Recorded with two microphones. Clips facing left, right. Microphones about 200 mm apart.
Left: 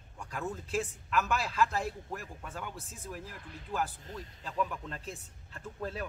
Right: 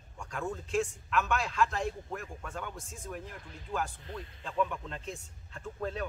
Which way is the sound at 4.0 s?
40° left (ahead or behind).